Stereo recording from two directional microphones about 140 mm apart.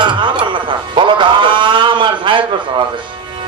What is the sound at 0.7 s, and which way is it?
Music, 35° right (ahead or behind).